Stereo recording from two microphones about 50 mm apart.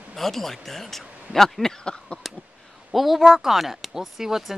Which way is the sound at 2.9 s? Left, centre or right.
Centre.